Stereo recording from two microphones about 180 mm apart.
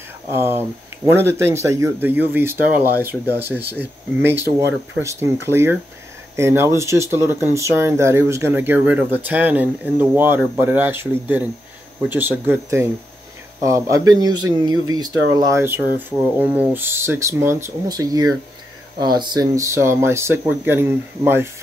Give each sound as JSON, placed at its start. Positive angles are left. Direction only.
{"t": 0.3, "sound": "speech", "side_deg": -15}